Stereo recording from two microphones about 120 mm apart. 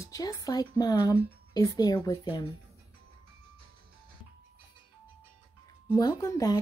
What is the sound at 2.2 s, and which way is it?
Speech, 40° left (ahead or behind).